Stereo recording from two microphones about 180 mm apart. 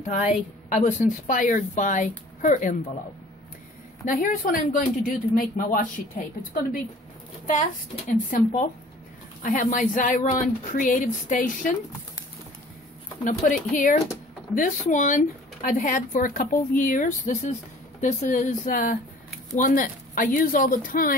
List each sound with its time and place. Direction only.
0.0 s speech: 40° left (ahead or behind)
4.0 s speech: 45° left (ahead or behind)
7.9 s speech: 45° left (ahead or behind)
13.2 s speech: 45° left (ahead or behind)